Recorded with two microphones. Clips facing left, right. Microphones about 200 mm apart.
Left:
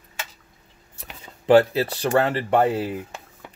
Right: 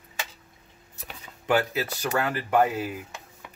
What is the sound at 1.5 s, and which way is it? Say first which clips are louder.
Speech: left 9 dB; 30° left (ahead or behind).